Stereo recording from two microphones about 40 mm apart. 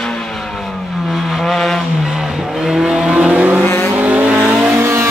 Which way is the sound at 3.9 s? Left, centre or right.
Right.